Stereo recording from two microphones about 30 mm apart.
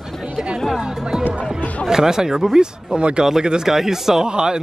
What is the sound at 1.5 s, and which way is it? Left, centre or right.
Chatter, left.